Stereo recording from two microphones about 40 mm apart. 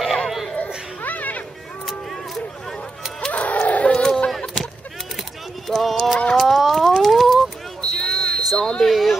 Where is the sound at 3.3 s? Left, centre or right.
Left.